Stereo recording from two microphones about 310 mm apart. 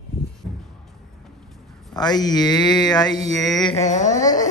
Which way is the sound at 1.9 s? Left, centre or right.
Centre.